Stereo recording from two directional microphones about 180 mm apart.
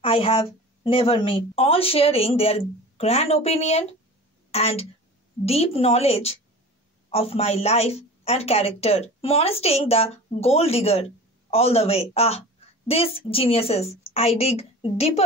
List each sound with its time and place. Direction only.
0.0 s a woman's voice: 30° left (ahead or behind)